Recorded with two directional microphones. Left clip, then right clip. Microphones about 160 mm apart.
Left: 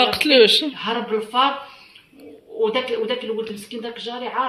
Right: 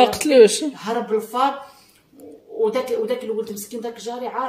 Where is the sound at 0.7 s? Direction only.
Centre (ahead or behind).